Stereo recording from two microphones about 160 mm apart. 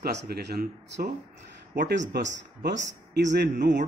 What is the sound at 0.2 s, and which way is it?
Speech, 85° right.